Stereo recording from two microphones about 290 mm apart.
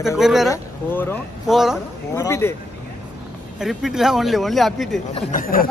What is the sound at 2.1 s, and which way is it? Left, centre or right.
Speech, centre.